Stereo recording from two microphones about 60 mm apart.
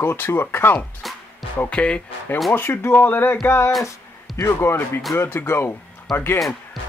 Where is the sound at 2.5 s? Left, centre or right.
Left.